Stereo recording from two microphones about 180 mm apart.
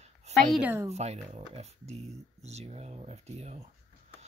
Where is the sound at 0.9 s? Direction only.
35° right (ahead or behind).